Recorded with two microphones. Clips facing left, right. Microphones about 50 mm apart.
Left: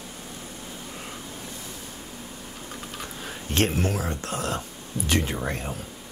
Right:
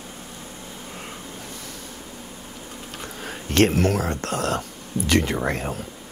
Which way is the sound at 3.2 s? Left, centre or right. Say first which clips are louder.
Right 6 dB; right.